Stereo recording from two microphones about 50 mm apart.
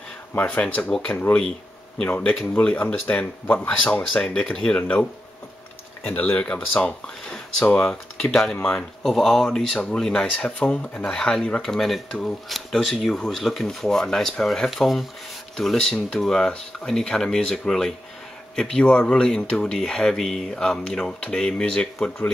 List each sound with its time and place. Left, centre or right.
0.6 s speech: left
6.0 s speech: left
7.7 s speech: centre
10.3 s speech: left
11.1 s speech: centre